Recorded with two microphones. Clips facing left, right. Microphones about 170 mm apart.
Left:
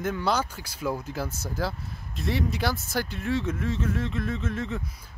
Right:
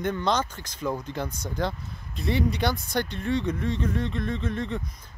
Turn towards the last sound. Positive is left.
turn(degrees=5)  # may be behind; listen again after turning